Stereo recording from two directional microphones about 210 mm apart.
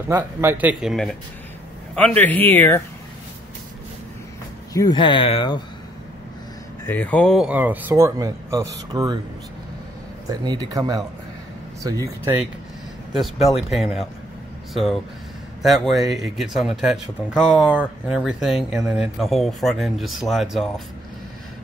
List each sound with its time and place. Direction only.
0.1 s speech: 10° right (ahead or behind); by 2.8 s 10° left (ahead or behind)
4.7 s speech: 20° left (ahead or behind)
6.9 s speech: 5° left (ahead or behind); by 9.2 s 20° right (ahead or behind)
10.3 s speech: 20° right (ahead or behind)
13.2 s speech: centre (ahead or behind)